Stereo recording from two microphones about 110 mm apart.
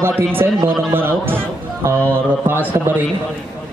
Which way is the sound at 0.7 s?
20° right (ahead or behind).